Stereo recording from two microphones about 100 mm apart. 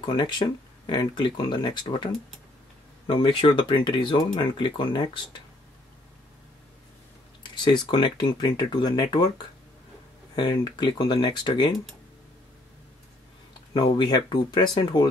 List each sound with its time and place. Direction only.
0.0 s speech: 50° left (ahead or behind)
3.1 s speech: 60° left (ahead or behind)
7.6 s speech: 50° left (ahead or behind)
13.7 s speech: 50° left (ahead or behind)